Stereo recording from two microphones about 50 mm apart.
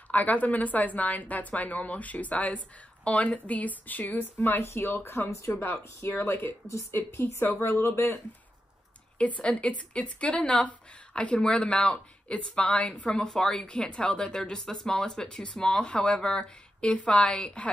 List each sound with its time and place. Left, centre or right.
0.1 s a woman's voice: left
6.4 s speech: left
7.8 s speech: left
9.2 s a woman's voice: left